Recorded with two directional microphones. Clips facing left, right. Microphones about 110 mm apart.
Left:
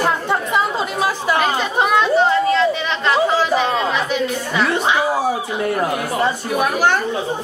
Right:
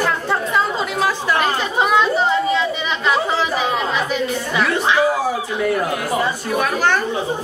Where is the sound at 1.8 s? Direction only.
Centre (ahead or behind).